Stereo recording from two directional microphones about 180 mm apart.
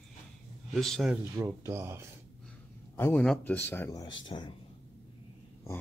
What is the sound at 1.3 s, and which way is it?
Speech, 15° right (ahead or behind).